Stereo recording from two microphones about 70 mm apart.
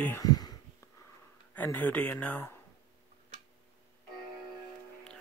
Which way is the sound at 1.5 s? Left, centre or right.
Left.